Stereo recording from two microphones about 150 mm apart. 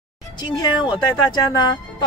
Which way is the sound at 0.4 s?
30° left (ahead or behind).